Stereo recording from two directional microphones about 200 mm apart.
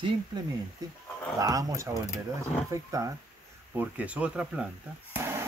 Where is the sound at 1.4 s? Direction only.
15° right (ahead or behind).